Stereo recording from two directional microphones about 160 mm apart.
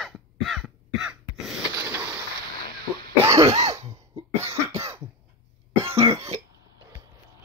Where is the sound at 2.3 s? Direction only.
75° right (ahead or behind).